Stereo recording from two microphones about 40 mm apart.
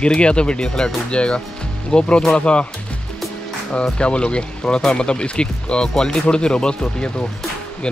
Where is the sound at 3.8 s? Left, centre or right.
Left.